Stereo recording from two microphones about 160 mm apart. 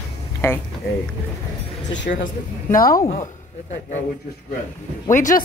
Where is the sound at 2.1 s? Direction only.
65° left (ahead or behind).